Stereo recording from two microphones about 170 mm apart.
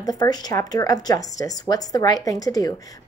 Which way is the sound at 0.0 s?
25° left (ahead or behind).